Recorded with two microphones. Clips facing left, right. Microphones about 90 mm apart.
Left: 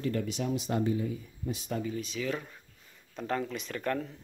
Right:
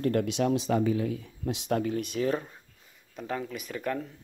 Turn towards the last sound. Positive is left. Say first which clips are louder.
# even
turn(degrees=-5)  # may be behind; listen again after turning